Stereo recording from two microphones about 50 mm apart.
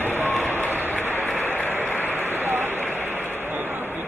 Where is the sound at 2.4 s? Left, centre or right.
Right.